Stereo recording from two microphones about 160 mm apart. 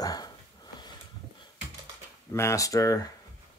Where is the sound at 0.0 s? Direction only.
25° left (ahead or behind).